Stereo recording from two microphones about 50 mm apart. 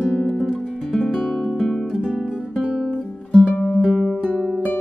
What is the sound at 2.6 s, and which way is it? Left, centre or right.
Music, right.